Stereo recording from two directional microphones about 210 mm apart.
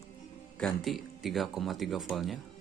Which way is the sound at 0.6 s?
Centre (ahead or behind).